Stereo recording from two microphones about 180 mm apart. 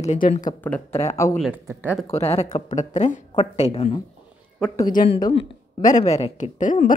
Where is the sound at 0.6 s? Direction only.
10° left (ahead or behind).